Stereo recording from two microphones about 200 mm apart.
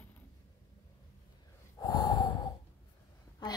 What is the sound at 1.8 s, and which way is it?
Gasp, 20° left (ahead or behind).